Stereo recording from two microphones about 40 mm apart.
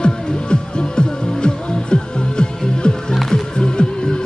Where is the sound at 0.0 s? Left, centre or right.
Left.